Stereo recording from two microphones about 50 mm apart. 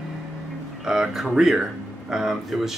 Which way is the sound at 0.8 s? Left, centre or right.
Centre.